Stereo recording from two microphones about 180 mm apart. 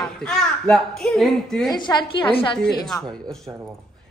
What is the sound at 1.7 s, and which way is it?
Speech, 25° left (ahead or behind).